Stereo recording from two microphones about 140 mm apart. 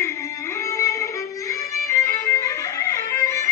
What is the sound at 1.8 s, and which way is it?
Music, 20° left (ahead or behind).